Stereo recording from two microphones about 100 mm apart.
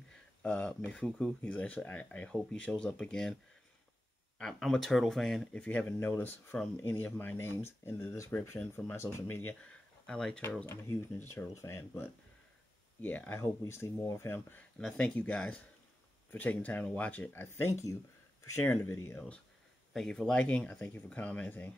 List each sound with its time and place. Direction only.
0.1 s speech: 10° left (ahead or behind)
4.4 s speech: 5° left (ahead or behind)
10.0 s speech: 5° left (ahead or behind)
10.6 s speech: 25° left (ahead or behind)
13.4 s speech: 30° left (ahead or behind)
19.1 s speech: 10° left (ahead or behind)